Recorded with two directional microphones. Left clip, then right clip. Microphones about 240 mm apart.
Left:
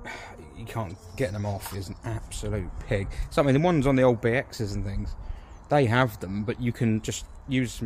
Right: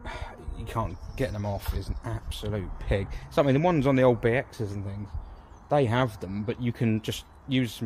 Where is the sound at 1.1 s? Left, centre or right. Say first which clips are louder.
Left 1 dB; centre.